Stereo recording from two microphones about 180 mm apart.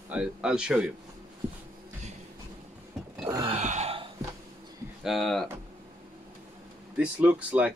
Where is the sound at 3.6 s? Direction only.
40° right (ahead or behind).